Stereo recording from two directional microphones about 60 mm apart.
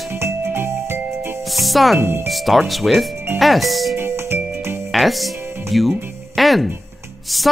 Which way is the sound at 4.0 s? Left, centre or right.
Right.